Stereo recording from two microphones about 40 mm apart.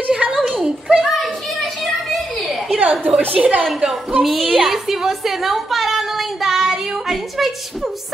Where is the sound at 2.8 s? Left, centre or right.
Right.